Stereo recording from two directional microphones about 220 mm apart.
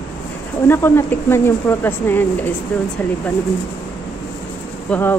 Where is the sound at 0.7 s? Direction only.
10° left (ahead or behind).